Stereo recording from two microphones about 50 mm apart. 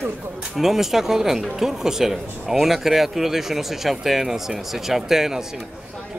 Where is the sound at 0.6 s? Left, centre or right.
Centre.